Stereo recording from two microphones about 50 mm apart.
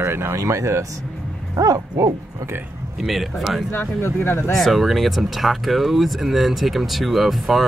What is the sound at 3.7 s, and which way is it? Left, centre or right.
Speech, left.